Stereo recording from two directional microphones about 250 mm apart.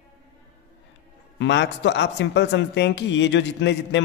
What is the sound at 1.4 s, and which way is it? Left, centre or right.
Speech, left.